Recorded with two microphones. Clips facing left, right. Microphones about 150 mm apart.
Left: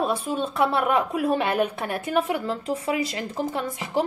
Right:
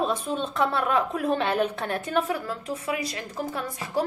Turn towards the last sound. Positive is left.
turn(degrees=25)  # may be behind; listen again after turning